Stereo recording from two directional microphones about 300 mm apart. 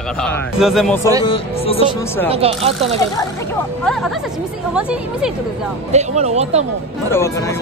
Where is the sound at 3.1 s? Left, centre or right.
Centre.